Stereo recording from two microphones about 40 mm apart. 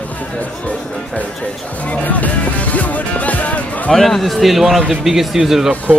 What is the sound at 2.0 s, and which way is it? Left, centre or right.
Music, left.